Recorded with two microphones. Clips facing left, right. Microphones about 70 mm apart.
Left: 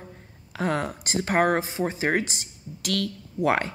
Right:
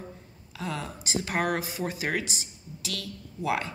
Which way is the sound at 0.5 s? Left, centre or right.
Left.